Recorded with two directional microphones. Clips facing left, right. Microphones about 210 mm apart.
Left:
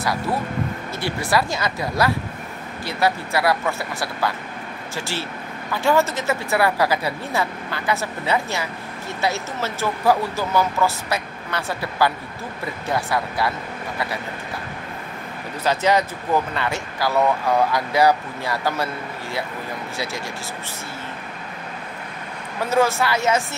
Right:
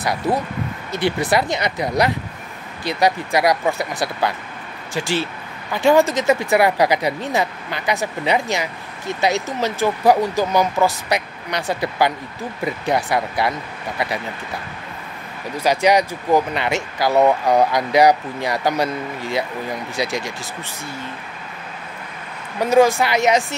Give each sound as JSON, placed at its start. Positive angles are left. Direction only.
{"t": 0.0, "sound": "speech", "side_deg": -20}
{"t": 15.5, "sound": "speech", "side_deg": -15}
{"t": 22.6, "sound": "speech", "side_deg": -15}